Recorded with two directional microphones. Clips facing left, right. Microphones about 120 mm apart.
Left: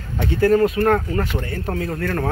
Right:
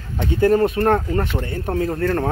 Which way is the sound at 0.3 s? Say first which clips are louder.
Even; 20° right (ahead or behind).